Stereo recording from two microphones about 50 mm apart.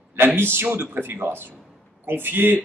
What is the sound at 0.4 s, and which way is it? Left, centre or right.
Speech, right.